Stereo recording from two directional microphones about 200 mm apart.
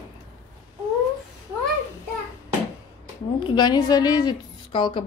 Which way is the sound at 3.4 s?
25° left (ahead or behind).